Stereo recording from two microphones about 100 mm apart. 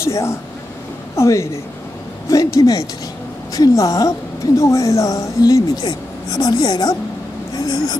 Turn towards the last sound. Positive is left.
turn(degrees=45)  # may be behind; listen again after turning